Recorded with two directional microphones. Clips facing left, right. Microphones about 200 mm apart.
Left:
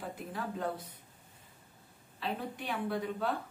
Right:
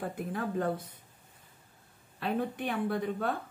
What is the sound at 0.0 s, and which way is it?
Speech, 55° right (ahead or behind).